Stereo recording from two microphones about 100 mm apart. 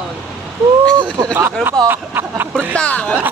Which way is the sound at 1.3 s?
20° right (ahead or behind).